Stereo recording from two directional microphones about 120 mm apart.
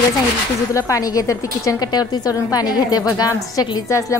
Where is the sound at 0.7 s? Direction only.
30° left (ahead or behind).